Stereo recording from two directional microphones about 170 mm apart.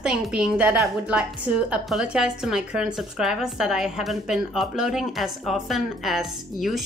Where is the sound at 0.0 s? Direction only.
5° right (ahead or behind).